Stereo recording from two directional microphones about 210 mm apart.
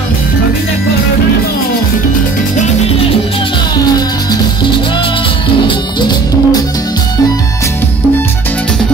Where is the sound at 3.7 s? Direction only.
20° left (ahead or behind).